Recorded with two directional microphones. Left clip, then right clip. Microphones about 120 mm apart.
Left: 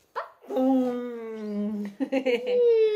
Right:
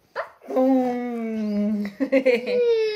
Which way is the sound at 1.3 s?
15° left (ahead or behind).